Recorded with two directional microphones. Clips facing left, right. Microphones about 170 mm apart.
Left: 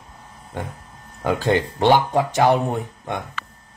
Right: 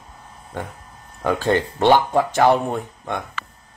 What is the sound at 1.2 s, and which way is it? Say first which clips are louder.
A man's voice: even; 15° left (ahead or behind).